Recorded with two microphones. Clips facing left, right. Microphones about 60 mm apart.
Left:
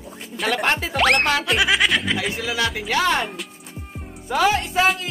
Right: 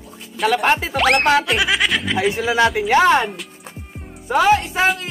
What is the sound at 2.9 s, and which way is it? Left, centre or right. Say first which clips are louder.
Music: right 6 dB; right.